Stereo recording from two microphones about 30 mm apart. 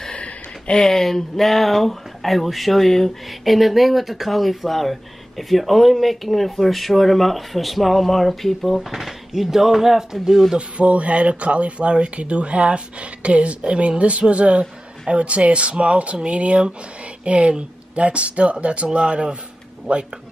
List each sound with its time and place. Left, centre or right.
0.7 s speech: centre
9.3 s speech: centre
10.8 s speech: right